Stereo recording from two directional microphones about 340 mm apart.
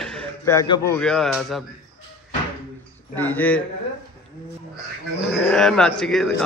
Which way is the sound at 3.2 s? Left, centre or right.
Centre.